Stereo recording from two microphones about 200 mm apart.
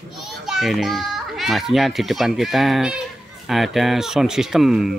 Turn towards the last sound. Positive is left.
turn(degrees=0)  # may be behind; listen again after turning